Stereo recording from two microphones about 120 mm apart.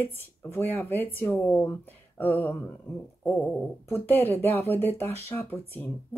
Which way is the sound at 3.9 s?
15° left (ahead or behind).